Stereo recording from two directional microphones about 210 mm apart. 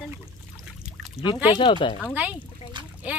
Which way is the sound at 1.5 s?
20° left (ahead or behind).